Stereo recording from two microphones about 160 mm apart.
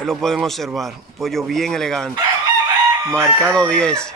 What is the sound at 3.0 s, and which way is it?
Speech, 20° right (ahead or behind).